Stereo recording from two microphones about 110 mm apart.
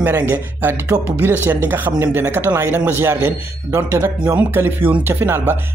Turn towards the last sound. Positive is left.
turn(degrees=-20)  # may be behind; listen again after turning